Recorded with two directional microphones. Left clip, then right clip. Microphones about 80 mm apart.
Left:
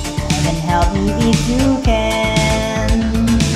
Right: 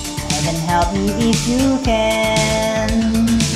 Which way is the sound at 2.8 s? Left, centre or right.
Left.